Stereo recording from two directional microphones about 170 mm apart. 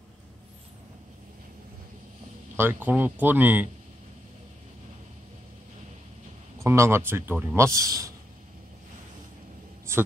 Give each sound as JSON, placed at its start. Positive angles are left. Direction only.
{"t": 2.5, "sound": "a man's voice", "side_deg": -15}
{"t": 6.6, "sound": "a man's voice", "side_deg": -15}